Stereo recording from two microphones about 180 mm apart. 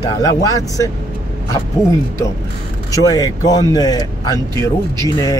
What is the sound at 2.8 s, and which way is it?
Speech, 20° left (ahead or behind).